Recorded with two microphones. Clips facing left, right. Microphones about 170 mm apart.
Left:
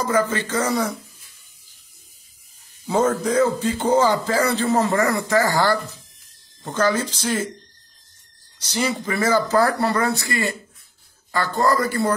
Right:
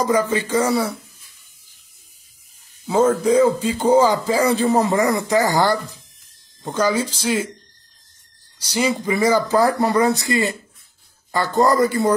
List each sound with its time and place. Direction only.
0.0 s speech: 15° right (ahead or behind)
2.9 s speech: centre (ahead or behind)
8.5 s a man's voice: 10° right (ahead or behind)